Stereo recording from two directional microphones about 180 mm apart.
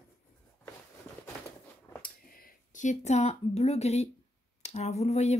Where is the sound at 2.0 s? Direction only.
50° left (ahead or behind).